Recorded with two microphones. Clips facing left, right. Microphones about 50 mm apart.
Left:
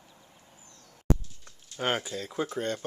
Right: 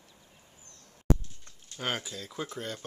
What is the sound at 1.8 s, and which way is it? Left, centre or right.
Speech, centre.